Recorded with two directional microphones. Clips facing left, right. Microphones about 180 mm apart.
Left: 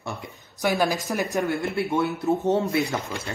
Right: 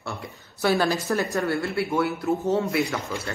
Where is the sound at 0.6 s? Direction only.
15° left (ahead or behind).